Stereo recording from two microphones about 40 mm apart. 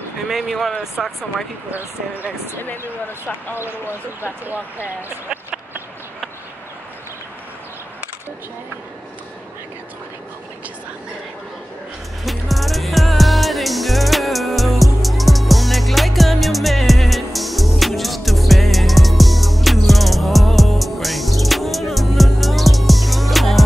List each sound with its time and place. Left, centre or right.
0.5 s speech: centre
1.0 s speech: centre
2.2 s speech: left
12.3 s music: centre